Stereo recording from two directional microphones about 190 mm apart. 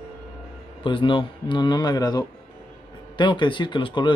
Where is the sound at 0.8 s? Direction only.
25° left (ahead or behind).